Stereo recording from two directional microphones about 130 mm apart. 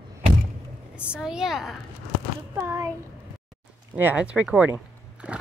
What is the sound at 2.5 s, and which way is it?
A child's voice, 20° right (ahead or behind).